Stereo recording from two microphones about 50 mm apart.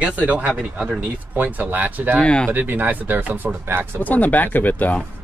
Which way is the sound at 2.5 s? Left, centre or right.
Right.